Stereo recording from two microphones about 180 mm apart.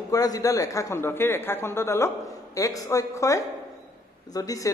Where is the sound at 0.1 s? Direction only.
20° left (ahead or behind).